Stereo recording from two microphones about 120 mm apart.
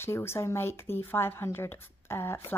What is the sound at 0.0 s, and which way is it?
A woman's voice, 20° left (ahead or behind).